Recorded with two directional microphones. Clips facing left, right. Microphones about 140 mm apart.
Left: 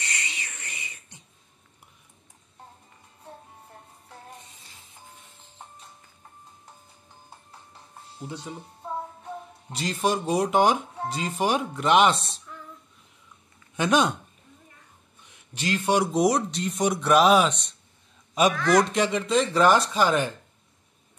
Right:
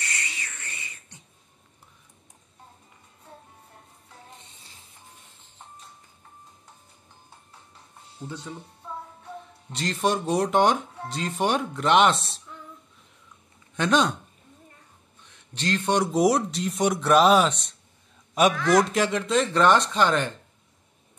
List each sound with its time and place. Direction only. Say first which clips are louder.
0.0 s a sound: even; 20° left (ahead or behind)
8.5 s speech: even; 15° left (ahead or behind)
9.7 s speech: right 1 dB; centre (ahead or behind)
13.7 s speech: even; 10° left (ahead or behind)
15.2 s speech: right 1 dB; 10° left (ahead or behind)